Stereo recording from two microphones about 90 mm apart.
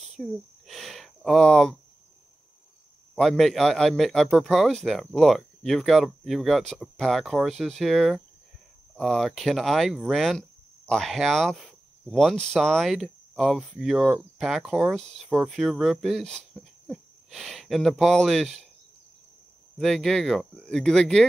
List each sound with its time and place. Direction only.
0.1 s a sound: centre (ahead or behind)
3.2 s a man's voice: 5° left (ahead or behind)
14.9 s a man's voice: centre (ahead or behind)
15.2 s speech: 10° right (ahead or behind)
15.8 s speech: centre (ahead or behind)
19.8 s speech: 5° left (ahead or behind)